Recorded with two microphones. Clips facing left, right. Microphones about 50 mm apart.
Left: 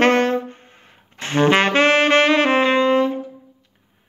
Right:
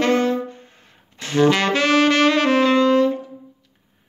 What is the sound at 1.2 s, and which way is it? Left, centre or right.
Saxophone, left.